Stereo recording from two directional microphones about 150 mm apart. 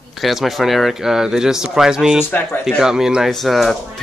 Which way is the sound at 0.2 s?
Centre (ahead or behind).